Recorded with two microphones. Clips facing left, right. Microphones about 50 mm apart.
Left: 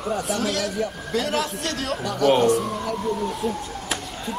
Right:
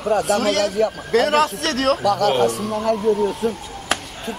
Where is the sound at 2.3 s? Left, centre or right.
Centre.